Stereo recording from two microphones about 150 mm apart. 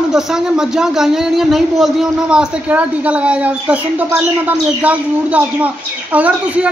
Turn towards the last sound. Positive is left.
turn(degrees=-10)  # may be behind; listen again after turning